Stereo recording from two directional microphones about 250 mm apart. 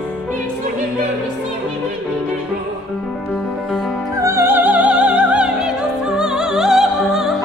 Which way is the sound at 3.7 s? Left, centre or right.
Centre.